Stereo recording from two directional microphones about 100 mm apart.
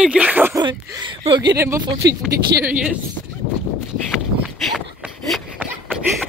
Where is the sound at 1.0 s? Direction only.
55° right (ahead or behind).